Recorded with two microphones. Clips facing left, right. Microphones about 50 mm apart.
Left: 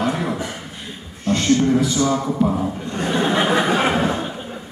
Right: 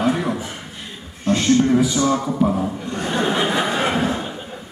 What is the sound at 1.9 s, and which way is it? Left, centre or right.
Speech, right.